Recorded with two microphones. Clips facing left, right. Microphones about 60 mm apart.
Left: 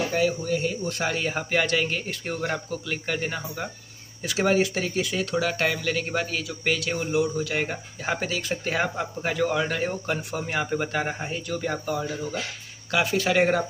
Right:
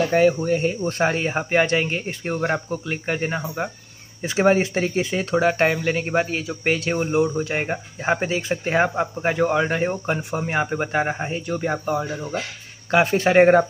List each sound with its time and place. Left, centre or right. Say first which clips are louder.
0.1 s speech: right 7 dB; right